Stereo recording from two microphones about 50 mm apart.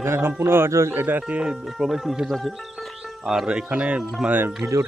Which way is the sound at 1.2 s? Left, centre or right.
Centre.